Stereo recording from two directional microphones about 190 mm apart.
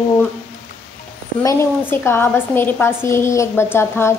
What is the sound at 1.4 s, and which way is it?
A woman's voice, 10° left (ahead or behind).